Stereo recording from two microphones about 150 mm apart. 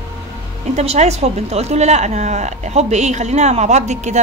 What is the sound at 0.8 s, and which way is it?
A woman's voice, 45° right (ahead or behind).